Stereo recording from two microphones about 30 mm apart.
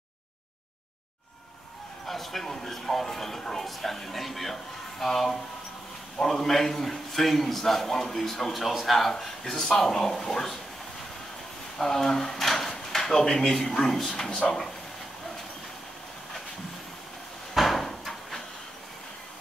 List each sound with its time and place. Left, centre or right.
2.0 s a man's voice: centre
11.8 s a man's voice: centre
12.6 s drawer open or close: centre
13.7 s a man's voice: centre
17.6 s cupboard open or close: centre